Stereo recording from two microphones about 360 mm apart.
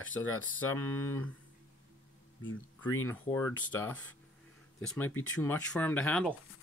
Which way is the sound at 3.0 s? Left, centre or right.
Centre.